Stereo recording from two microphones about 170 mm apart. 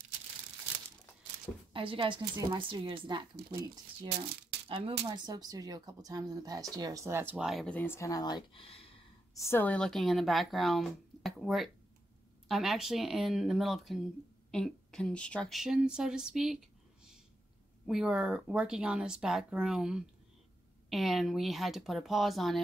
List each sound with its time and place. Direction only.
1.7 s a woman's voice: 30° right (ahead or behind)
4.6 s a woman's voice: 35° right (ahead or behind); by 8.9 s 35° left (ahead or behind)
9.3 s speech: 15° left (ahead or behind); by 16.5 s 5° right (ahead or behind)
17.8 s speech: 5° right (ahead or behind)